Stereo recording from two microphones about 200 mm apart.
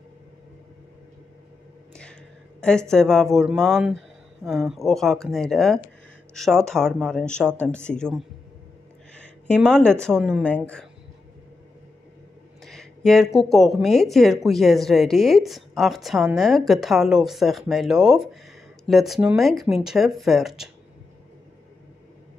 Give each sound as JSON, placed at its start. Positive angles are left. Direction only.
{"t": 2.9, "sound": "speech", "side_deg": 0}
{"t": 12.6, "sound": "speech", "side_deg": 0}